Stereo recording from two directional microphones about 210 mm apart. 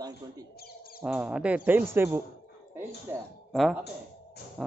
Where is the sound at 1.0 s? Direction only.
5° right (ahead or behind).